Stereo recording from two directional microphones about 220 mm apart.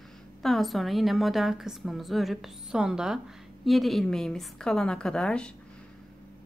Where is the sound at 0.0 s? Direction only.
Centre (ahead or behind).